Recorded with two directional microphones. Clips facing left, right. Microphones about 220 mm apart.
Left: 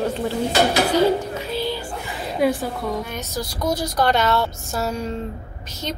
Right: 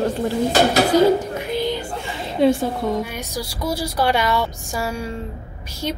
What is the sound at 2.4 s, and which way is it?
Speech, 25° right (ahead or behind).